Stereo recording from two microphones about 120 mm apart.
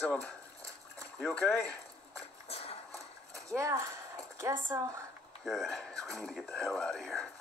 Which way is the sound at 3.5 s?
25° right (ahead or behind).